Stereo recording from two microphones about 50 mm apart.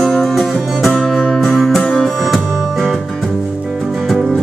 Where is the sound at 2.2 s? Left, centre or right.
Centre.